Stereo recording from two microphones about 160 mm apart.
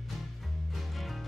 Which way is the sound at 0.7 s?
Centre (ahead or behind).